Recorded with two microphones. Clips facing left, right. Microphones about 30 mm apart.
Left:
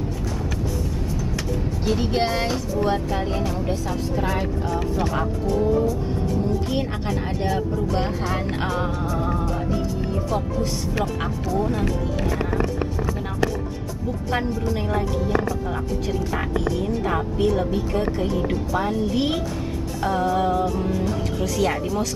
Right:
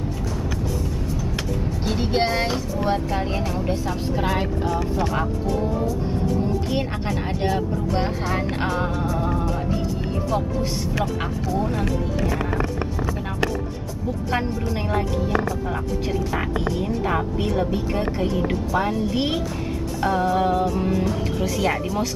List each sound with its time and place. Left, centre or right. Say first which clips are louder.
1.9 s a woman's voice: even; centre
4.2 s speech: right 2 dB; right
6.7 s a woman's voice: even; centre
17.6 s speech: even; centre
17.9 s a woman's voice: left 1 dB; centre